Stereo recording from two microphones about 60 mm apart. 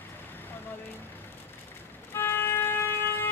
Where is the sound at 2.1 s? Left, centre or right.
Left.